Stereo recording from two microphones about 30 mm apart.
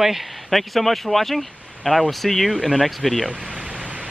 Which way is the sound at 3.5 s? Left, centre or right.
Right.